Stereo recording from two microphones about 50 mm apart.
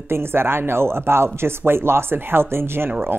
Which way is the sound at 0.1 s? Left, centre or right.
Right.